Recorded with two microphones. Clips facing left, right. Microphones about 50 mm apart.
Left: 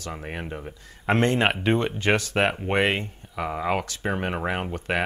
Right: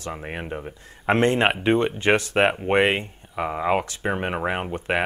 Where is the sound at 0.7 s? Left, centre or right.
Right.